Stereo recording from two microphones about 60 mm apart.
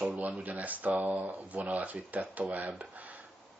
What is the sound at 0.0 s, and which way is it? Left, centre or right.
Speech, right.